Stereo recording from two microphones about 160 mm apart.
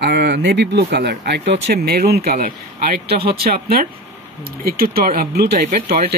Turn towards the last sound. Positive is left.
turn(degrees=-75)  # may be behind; listen again after turning